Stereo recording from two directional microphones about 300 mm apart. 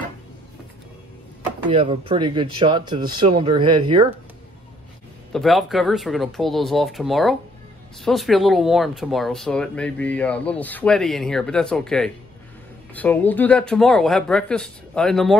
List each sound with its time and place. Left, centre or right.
1.7 s speech: centre
5.3 s speech: centre